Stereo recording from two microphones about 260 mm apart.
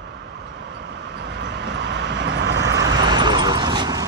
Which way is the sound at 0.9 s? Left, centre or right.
Right.